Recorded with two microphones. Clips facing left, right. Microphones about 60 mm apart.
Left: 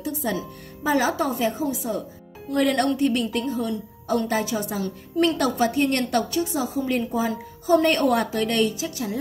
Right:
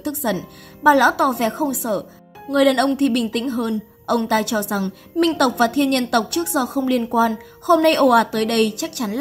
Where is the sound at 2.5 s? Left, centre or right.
Right.